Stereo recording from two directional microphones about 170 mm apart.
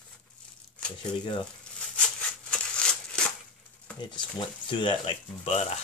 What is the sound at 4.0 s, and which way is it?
Speech, 25° left (ahead or behind).